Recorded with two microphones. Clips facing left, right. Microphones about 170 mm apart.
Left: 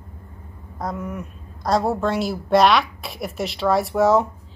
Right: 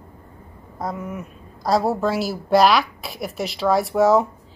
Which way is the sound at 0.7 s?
Centre (ahead or behind).